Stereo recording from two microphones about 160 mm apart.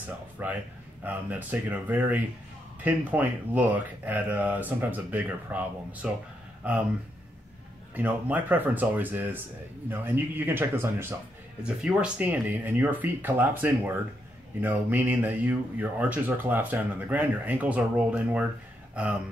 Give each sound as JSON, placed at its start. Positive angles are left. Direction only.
{"t": 0.0, "sound": "speech", "side_deg": -10}
{"t": 7.9, "sound": "speech", "side_deg": -10}
{"t": 11.6, "sound": "speech", "side_deg": -5}